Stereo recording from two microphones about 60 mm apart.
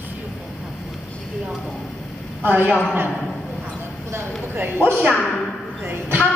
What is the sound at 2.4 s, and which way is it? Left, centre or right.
Speech, right.